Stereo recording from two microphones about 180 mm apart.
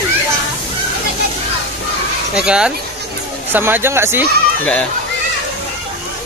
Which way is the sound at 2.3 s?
5° right (ahead or behind).